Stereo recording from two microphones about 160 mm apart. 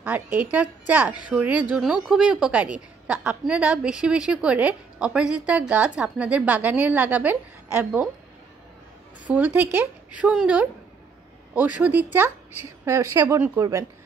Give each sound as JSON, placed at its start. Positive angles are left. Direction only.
{"t": 0.4, "sound": "a woman's voice", "side_deg": -10}
{"t": 9.3, "sound": "a woman's voice", "side_deg": -10}